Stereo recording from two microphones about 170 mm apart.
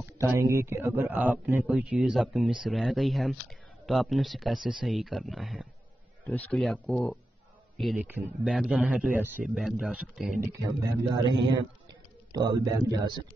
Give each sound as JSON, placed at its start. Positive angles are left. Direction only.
{"t": 0.0, "sound": "a man's voice", "side_deg": -15}
{"t": 10.4, "sound": "speech", "side_deg": -20}